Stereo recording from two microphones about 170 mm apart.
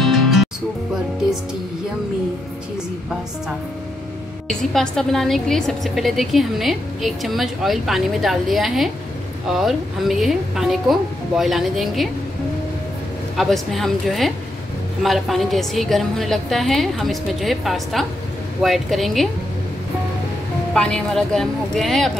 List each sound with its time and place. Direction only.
0.0 s music: centre (ahead or behind)
4.5 s a woman's voice: 5° left (ahead or behind)
13.4 s a woman's voice: centre (ahead or behind)
20.7 s a woman's voice: 5° left (ahead or behind)